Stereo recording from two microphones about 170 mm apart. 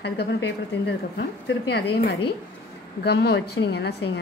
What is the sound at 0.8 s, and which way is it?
A woman's voice, 85° left.